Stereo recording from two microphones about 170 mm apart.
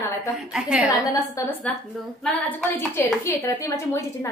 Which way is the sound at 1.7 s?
5° left (ahead or behind).